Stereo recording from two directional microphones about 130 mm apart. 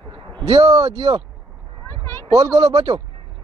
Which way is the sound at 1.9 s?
20° left (ahead or behind).